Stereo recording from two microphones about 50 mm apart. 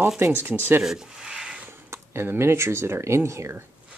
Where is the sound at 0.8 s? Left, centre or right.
Centre.